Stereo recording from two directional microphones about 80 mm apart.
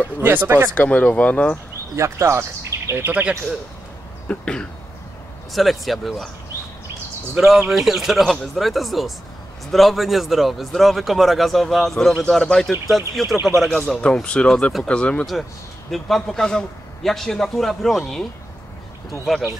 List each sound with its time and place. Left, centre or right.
0.2 s speech: right
0.7 s speech: centre
2.0 s speech: right
2.9 s speech: right
4.3 s speech: centre
5.5 s a man's voice: centre
7.3 s a man's voice: centre
15.9 s a man's voice: centre